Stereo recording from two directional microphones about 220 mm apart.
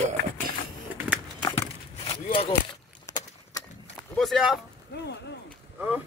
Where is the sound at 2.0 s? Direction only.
25° left (ahead or behind).